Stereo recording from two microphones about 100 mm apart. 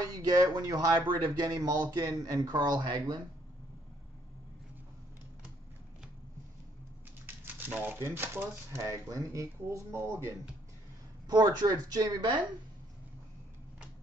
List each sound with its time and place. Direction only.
0.0 s speech: 40° right (ahead or behind)
7.2 s speech: 20° right (ahead or behind)
11.2 s speech: 40° right (ahead or behind)